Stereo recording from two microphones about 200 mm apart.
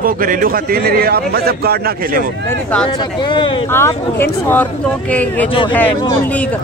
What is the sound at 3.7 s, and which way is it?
Speech, 10° left (ahead or behind).